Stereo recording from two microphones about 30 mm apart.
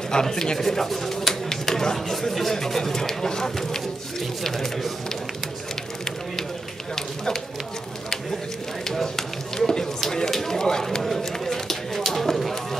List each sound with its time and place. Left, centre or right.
0.1 s speech: centre
8.9 s speech: centre
11.0 s speech: centre
11.3 s a sound: centre